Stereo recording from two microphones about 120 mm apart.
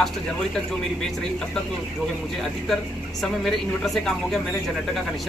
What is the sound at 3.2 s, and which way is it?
A woman's voice, centre (ahead or behind).